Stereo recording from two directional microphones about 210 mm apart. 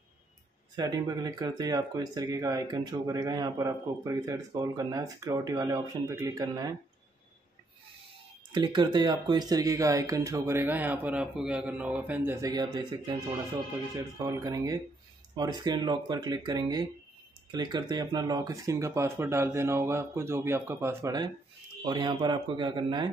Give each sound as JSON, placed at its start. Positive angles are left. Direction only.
{"t": 0.7, "sound": "speech", "side_deg": -20}
{"t": 8.5, "sound": "speech", "side_deg": -20}